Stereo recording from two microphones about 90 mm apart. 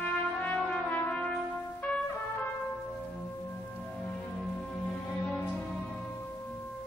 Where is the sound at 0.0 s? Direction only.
15° left (ahead or behind).